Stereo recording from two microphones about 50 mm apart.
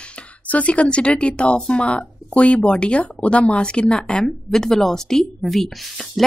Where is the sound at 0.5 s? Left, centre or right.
Left.